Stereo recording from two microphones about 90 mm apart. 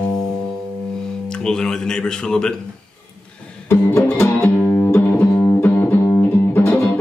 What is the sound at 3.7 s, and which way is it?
Music, 30° left (ahead or behind).